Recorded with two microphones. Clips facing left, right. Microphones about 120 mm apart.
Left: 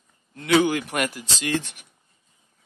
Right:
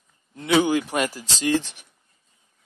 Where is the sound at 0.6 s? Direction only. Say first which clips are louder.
Right 2 dB; 20° right (ahead or behind).